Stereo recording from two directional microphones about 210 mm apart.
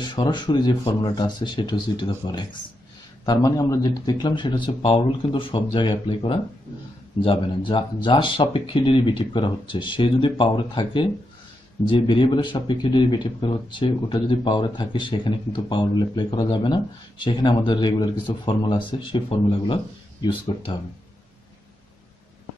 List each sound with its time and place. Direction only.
0.0 s speech: 20° left (ahead or behind)